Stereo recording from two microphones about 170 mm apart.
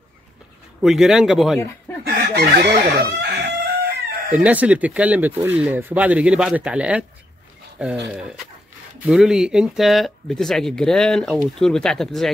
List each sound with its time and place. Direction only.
0.8 s speech: 5° right (ahead or behind)
2.0 s chicken: 65° right (ahead or behind)
4.4 s speech: 10° right (ahead or behind)
8.1 s speech: 5° right (ahead or behind)